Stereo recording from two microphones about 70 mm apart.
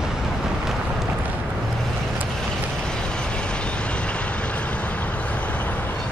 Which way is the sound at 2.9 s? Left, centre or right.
Centre.